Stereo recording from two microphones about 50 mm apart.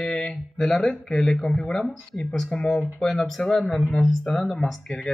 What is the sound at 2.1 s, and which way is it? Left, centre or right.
Speech, centre.